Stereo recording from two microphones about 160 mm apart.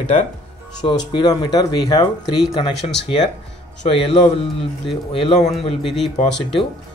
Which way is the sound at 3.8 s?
35° left (ahead or behind).